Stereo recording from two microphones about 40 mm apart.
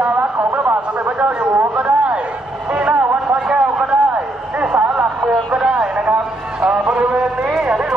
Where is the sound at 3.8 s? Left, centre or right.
Right.